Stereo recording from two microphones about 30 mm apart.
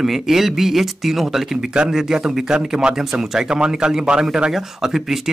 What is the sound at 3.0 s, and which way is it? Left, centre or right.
Speech, centre.